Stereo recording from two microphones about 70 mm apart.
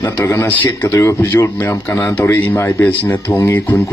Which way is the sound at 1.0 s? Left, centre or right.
Left.